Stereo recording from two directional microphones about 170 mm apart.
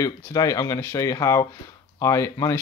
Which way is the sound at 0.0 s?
20° left (ahead or behind).